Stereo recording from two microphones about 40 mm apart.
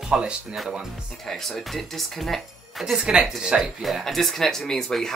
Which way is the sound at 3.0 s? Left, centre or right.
Centre.